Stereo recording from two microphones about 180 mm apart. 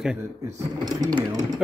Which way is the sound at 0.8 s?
20° right (ahead or behind).